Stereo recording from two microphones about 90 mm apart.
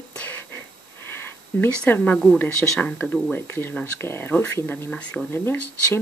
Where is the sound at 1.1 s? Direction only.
20° left (ahead or behind).